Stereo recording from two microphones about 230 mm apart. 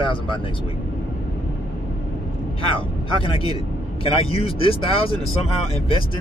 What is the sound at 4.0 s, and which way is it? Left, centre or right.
Speech, left.